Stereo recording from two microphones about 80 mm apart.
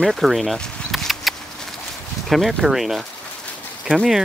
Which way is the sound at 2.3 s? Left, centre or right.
Centre.